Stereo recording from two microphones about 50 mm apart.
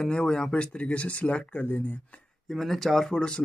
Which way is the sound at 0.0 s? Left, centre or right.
Centre.